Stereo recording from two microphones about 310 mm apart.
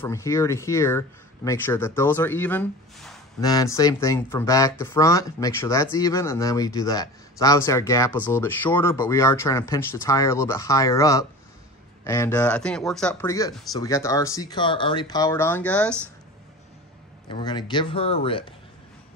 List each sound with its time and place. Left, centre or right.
0.0 s speech: centre
17.3 s speech: centre